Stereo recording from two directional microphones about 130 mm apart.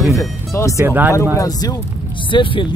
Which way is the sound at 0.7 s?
15° right (ahead or behind).